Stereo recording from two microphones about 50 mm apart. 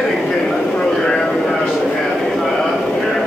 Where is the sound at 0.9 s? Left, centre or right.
Centre.